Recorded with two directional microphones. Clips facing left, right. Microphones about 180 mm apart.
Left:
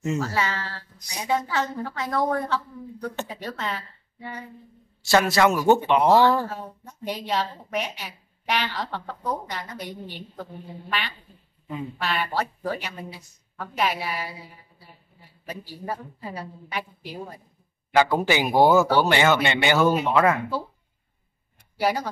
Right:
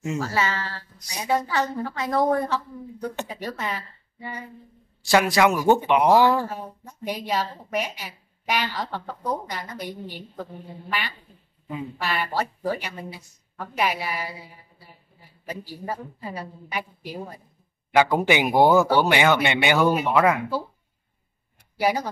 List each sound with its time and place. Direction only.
0.0 s a woman's voice: 10° right (ahead or behind)
17.9 s speech: 15° right (ahead or behind)
21.7 s speech: 10° right (ahead or behind)